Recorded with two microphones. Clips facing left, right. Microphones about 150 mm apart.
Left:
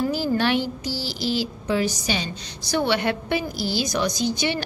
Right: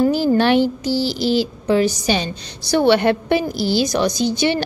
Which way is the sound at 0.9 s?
25° right (ahead or behind).